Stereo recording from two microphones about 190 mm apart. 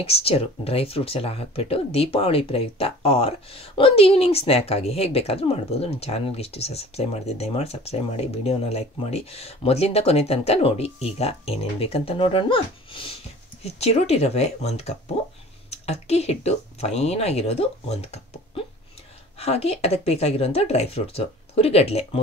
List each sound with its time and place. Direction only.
0.0 s speech: 30° left (ahead or behind)